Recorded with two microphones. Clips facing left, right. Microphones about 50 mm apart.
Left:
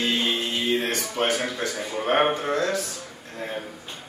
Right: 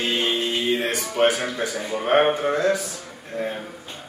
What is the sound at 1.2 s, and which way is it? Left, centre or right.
Speech, centre.